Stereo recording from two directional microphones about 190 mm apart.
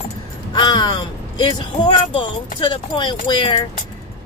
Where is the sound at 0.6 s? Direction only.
20° left (ahead or behind).